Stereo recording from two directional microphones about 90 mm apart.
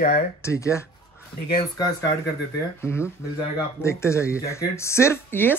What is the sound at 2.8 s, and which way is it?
Speech, 30° left (ahead or behind).